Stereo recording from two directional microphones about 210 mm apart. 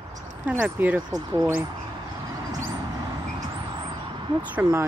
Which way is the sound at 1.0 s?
20° right (ahead or behind).